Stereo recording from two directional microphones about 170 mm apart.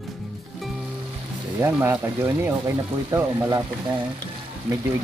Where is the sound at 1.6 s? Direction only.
10° right (ahead or behind).